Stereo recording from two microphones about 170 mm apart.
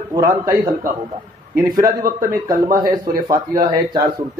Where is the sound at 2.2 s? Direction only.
20° right (ahead or behind).